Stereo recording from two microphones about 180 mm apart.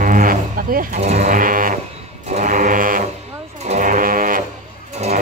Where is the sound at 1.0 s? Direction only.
40° right (ahead or behind).